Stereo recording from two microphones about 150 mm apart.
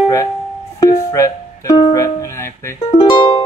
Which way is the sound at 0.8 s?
20° left (ahead or behind).